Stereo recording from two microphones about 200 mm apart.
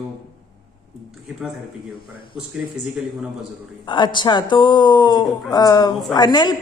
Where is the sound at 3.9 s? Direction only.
20° left (ahead or behind).